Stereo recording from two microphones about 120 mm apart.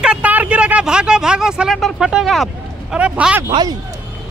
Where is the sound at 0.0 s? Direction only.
10° right (ahead or behind).